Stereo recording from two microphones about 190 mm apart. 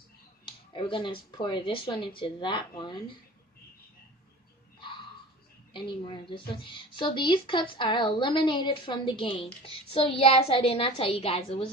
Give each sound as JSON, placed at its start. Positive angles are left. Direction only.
{"t": 0.5, "sound": "a woman's voice", "side_deg": 25}
{"t": 5.7, "sound": "a woman's voice", "side_deg": 25}